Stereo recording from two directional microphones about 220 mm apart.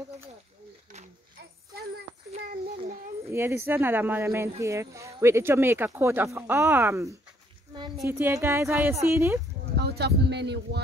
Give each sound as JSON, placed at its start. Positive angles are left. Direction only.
{"t": 3.3, "sound": "speech", "side_deg": -10}
{"t": 9.8, "sound": "speech", "side_deg": -50}